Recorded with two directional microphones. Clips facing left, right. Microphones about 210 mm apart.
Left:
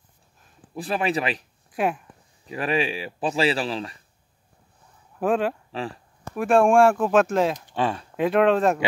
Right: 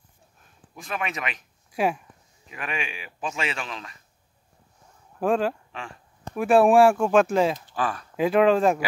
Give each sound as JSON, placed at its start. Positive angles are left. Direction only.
{"t": 0.7, "sound": "speech", "side_deg": 35}
{"t": 1.7, "sound": "speech", "side_deg": 0}
{"t": 2.4, "sound": "speech", "side_deg": 35}
{"t": 5.2, "sound": "speech", "side_deg": 0}
{"t": 5.7, "sound": "speech", "side_deg": 35}
{"t": 6.3, "sound": "speech", "side_deg": 0}
{"t": 7.7, "sound": "speech", "side_deg": 25}
{"t": 8.2, "sound": "speech", "side_deg": 0}